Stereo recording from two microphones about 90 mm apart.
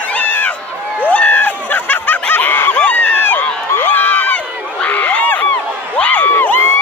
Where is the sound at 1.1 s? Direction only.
20° left (ahead or behind).